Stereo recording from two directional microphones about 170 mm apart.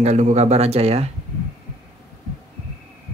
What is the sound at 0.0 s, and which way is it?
Speech, 40° right (ahead or behind).